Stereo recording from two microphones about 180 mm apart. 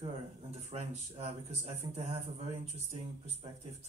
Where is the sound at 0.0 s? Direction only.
35° right (ahead or behind).